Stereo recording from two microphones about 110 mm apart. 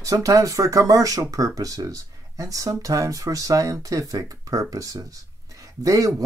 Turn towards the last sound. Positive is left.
turn(degrees=-30)  # may be behind; listen again after turning